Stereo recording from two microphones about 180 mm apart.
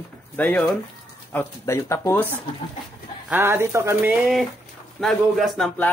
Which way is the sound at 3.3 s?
10° right (ahead or behind).